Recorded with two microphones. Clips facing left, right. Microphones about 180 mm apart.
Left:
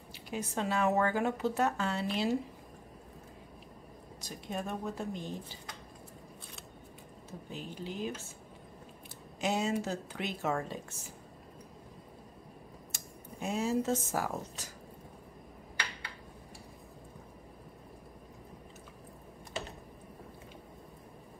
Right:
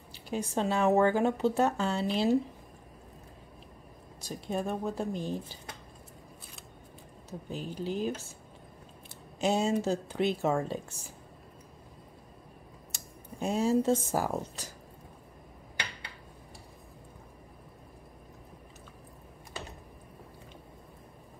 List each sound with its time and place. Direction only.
0.1 s a woman's voice: 30° right (ahead or behind)
4.2 s speech: 30° right (ahead or behind)
7.5 s speech: 35° right (ahead or behind)
9.4 s a woman's voice: 30° right (ahead or behind)
13.4 s speech: 30° right (ahead or behind)